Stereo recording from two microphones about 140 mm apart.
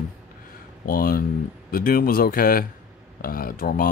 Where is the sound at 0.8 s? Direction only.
90° left.